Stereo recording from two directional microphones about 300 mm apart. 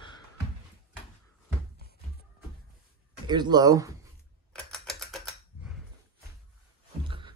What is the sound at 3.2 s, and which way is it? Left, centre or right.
Speech, centre.